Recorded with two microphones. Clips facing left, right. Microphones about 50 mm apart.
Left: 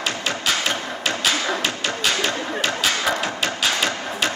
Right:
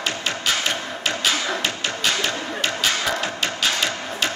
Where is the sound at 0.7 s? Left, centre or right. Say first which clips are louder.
Left 1 dB; centre.